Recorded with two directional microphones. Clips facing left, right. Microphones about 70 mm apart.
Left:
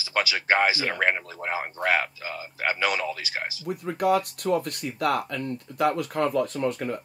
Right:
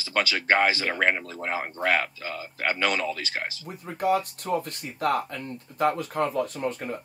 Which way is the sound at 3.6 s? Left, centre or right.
Left.